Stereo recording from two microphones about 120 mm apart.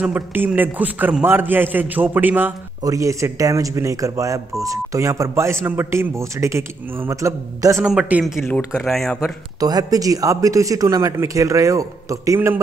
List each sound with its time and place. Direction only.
0.0 s a man's voice: 15° right (ahead or behind)
2.8 s speech: 30° right (ahead or behind)
7.8 s a man's voice: 5° right (ahead or behind)
8.5 s speech: 10° left (ahead or behind)
9.6 s speech: 30° right (ahead or behind)